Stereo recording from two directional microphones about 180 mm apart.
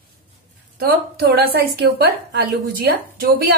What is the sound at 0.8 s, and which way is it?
A woman's voice, 60° right (ahead or behind).